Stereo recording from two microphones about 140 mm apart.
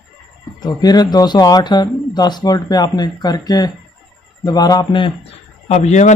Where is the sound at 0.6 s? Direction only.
30° left (ahead or behind).